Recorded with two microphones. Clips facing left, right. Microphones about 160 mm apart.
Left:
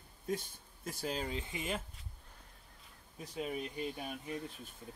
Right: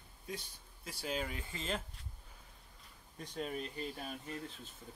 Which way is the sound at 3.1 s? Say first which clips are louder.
Left 1 dB; 5° left (ahead or behind).